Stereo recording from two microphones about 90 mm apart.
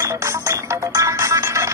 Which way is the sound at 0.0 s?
35° right (ahead or behind).